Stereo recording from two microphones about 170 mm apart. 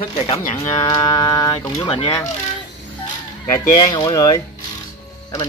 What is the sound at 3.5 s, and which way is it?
Speech, 25° left (ahead or behind).